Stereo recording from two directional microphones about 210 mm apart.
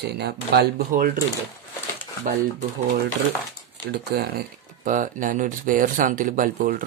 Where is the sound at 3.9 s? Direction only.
50° right (ahead or behind).